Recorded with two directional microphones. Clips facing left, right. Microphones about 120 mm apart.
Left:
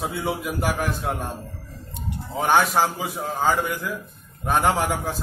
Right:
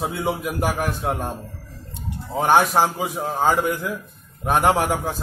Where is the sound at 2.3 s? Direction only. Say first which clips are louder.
Right 2 dB; 15° right (ahead or behind).